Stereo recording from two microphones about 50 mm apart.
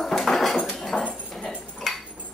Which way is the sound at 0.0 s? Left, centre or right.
Centre.